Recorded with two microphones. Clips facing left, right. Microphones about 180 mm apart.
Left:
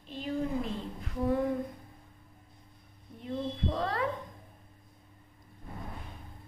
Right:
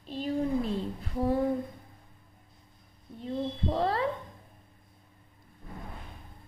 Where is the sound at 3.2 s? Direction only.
30° right (ahead or behind).